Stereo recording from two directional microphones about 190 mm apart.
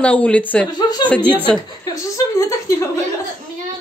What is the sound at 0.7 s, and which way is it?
Speech, 20° left (ahead or behind).